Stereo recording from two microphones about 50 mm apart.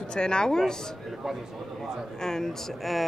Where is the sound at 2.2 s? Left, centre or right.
Centre.